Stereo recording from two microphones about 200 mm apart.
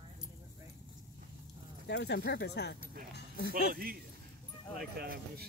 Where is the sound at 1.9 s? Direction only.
60° left (ahead or behind).